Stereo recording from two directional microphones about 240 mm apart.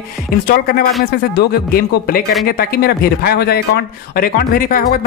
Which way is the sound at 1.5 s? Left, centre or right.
Left.